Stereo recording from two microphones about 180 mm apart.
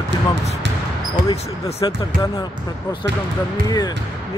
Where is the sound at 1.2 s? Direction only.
50° right (ahead or behind).